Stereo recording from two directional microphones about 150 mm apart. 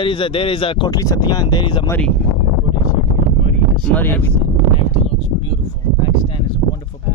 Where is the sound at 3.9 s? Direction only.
10° left (ahead or behind).